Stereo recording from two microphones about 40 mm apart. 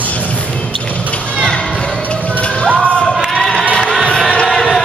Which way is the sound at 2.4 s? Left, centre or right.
Left.